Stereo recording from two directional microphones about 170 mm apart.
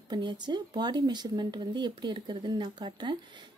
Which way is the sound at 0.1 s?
25° right (ahead or behind).